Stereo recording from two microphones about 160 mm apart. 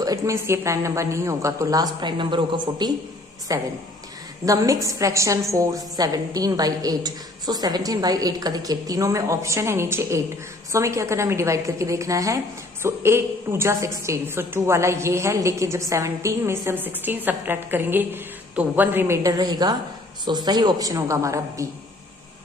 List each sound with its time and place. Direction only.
0.0 s a woman's voice: 20° right (ahead or behind)